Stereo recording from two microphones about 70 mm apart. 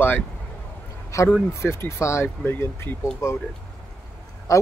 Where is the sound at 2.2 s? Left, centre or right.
Left.